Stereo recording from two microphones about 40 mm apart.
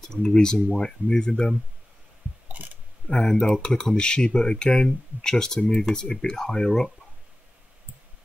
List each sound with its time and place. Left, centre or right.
0.0 s speech: centre
2.4 s a sound: right
3.1 s speech: left